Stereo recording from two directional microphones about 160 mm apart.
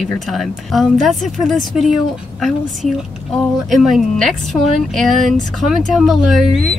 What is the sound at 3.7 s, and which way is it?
A woman's voice, centre (ahead or behind).